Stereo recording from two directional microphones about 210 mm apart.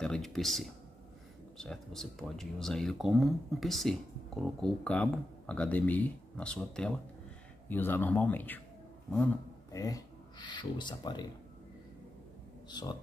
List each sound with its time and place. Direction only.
0.0 s speech: centre (ahead or behind); by 11.2 s 20° left (ahead or behind)
12.6 s speech: 20° left (ahead or behind)